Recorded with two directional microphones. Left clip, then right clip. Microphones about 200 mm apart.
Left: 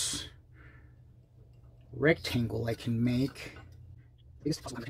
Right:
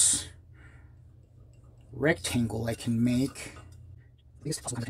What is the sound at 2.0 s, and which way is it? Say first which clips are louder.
Speech: even; 5° right (ahead or behind).